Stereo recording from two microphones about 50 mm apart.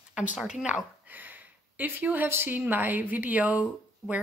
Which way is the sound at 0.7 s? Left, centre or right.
Right.